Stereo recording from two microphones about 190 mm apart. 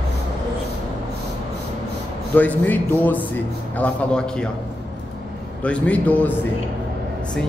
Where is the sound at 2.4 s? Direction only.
10° left (ahead or behind).